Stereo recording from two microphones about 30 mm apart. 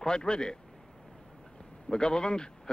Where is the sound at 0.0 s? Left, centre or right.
Left.